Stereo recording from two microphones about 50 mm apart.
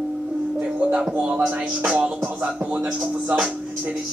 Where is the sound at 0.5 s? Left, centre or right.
Right.